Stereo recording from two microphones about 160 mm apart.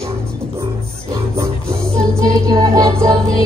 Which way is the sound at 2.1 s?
25° right (ahead or behind).